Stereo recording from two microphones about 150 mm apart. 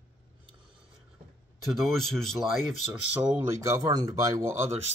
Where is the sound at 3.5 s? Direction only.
20° right (ahead or behind).